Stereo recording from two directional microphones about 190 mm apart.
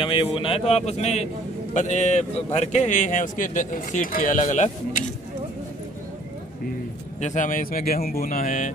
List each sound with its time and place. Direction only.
0.0 s a man's voice: 25° left (ahead or behind)
7.2 s speech: 40° left (ahead or behind)